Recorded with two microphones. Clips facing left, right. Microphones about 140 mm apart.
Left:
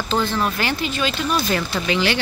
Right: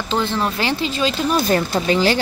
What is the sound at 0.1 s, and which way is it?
Speech, 25° right (ahead or behind).